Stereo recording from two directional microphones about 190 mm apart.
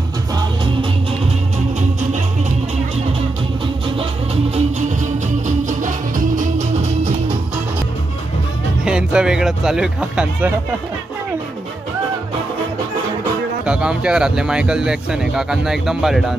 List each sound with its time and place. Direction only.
5.7 s music: 40° right (ahead or behind)
8.8 s speech: 5° right (ahead or behind)
13.7 s speech: 5° right (ahead or behind)